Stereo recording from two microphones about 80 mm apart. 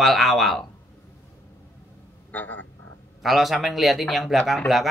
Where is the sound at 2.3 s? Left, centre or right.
Left.